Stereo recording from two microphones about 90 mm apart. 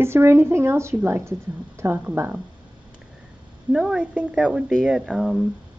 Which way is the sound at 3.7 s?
5° right (ahead or behind).